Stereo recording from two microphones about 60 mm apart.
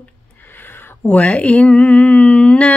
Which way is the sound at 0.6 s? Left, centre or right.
Left.